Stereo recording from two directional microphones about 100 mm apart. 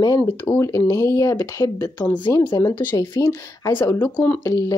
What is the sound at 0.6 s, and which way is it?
Speech, 35° left (ahead or behind).